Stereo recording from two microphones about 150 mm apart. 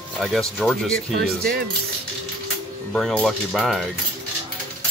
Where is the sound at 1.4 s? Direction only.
90° right.